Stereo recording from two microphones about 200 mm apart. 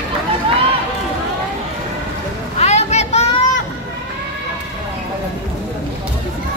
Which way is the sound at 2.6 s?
35° left (ahead or behind).